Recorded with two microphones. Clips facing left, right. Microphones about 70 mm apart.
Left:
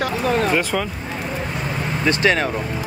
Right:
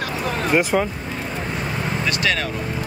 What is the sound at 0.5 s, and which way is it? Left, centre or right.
Speech, centre.